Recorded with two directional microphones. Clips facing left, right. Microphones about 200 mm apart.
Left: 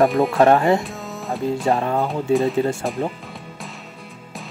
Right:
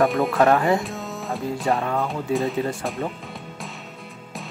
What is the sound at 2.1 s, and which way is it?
Speech, centre (ahead or behind).